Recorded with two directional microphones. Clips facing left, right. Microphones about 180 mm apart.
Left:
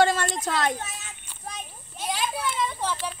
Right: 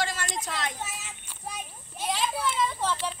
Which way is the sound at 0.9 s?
5° right (ahead or behind).